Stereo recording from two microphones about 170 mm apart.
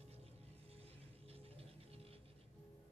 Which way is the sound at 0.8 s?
35° right (ahead or behind).